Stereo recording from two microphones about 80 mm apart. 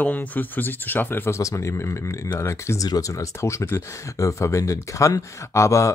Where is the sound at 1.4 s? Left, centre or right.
Left.